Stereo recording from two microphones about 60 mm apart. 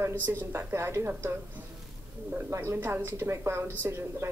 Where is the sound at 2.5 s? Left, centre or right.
Right.